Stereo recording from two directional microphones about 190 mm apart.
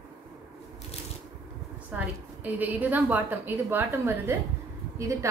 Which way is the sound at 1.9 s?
10° right (ahead or behind).